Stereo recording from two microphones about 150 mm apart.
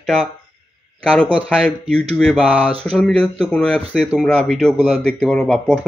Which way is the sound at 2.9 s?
5° left (ahead or behind).